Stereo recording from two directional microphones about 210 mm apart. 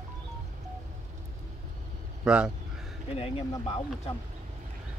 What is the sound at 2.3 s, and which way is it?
Speech, 5° right (ahead or behind).